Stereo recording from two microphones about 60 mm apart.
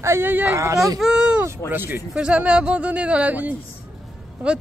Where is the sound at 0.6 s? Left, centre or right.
Right.